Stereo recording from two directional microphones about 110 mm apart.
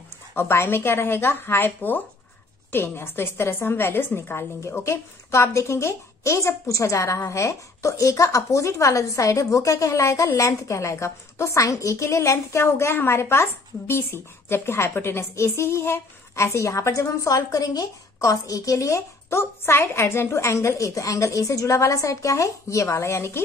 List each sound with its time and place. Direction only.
0.3 s a woman's voice: 20° left (ahead or behind)